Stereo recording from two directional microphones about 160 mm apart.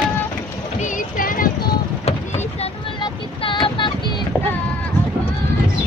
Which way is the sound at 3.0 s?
30° left (ahead or behind).